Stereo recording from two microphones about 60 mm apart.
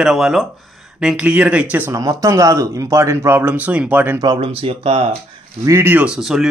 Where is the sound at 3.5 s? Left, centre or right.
Right.